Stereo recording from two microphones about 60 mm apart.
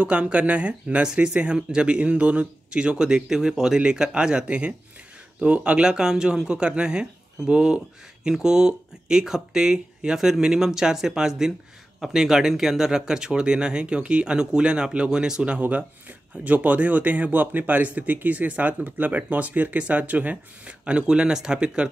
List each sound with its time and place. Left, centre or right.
0.0 s speech: centre
15.6 s speech: right